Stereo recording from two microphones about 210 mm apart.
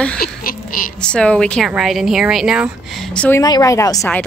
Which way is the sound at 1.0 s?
5° left (ahead or behind).